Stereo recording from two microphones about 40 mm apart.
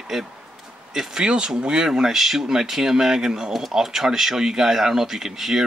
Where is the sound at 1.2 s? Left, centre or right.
Right.